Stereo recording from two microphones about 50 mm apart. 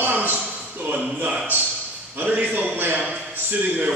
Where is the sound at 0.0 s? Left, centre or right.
Right.